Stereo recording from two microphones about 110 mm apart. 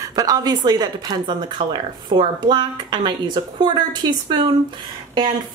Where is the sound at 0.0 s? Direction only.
30° right (ahead or behind).